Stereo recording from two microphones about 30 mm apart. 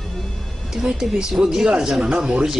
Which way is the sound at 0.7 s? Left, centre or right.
Centre.